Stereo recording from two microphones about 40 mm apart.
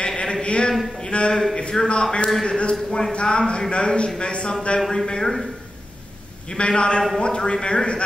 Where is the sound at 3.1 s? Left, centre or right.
Left.